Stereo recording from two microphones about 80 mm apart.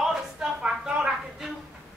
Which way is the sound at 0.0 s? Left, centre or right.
Centre.